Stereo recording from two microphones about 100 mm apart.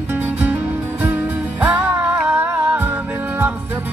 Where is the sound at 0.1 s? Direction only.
15° right (ahead or behind).